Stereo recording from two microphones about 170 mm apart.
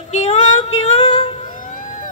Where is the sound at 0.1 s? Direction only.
45° left (ahead or behind).